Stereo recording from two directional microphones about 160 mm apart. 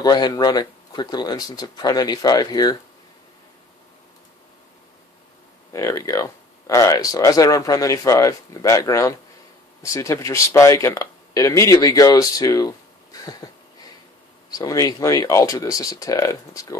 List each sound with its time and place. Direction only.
0.0 s speech: 25° left (ahead or behind)
5.7 s speech: 20° left (ahead or behind)
14.5 s speech: 25° left (ahead or behind)